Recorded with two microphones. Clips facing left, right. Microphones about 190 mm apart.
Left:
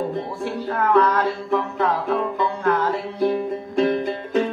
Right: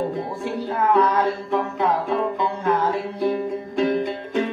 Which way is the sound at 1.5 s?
Centre (ahead or behind).